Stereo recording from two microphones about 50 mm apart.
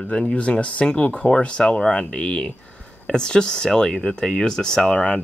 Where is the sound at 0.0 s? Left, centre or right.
Left.